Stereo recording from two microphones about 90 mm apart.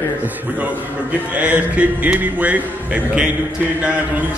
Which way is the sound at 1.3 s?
15° right (ahead or behind).